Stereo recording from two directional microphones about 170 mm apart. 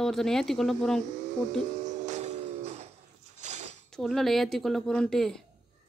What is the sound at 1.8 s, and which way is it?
Music, 45° right (ahead or behind).